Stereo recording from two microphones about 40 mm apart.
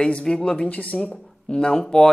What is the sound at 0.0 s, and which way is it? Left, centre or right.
Speech, left.